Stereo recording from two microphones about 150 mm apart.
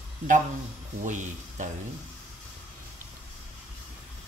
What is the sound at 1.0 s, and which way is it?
Speech, 55° right (ahead or behind).